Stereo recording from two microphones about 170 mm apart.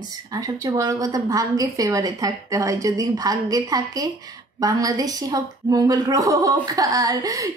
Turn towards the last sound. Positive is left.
turn(degrees=-20)  # may be behind; listen again after turning